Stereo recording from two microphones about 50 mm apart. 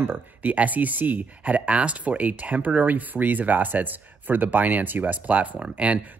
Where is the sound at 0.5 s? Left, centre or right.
Right.